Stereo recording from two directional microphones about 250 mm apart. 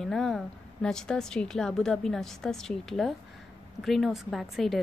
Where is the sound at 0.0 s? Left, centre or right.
Centre.